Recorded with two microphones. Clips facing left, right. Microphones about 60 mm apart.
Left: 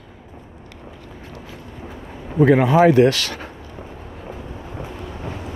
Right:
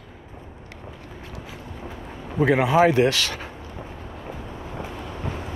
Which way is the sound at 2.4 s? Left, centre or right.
Centre.